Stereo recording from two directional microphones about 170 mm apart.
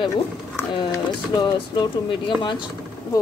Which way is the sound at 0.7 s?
25° left (ahead or behind).